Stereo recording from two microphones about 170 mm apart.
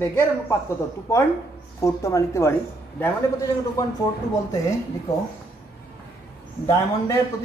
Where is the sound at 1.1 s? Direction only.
15° left (ahead or behind).